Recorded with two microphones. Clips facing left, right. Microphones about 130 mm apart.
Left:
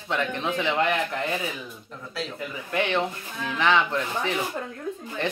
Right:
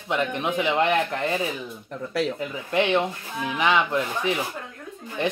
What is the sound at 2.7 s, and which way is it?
Speech, 15° right (ahead or behind).